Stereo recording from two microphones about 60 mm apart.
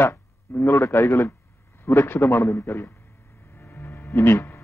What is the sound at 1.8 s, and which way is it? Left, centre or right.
A man's voice, left.